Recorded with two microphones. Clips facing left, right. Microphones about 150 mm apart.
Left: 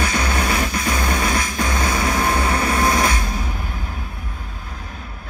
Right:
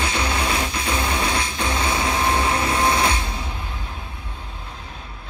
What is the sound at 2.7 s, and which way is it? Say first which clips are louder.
Music: left 2 dB; 25° right (ahead or behind).